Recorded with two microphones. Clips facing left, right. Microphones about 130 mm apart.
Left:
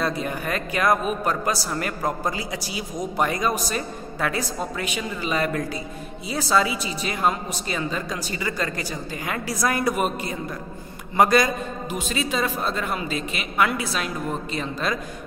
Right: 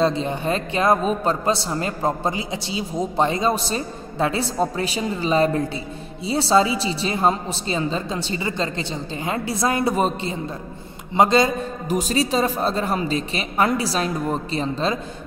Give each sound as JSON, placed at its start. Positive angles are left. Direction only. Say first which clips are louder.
{"t": 0.0, "sound": "a man's voice", "louder": "right 5 dB", "side_deg": -25}
{"t": 11.9, "sound": "a woman's voice", "louder": "right 7 dB", "side_deg": -40}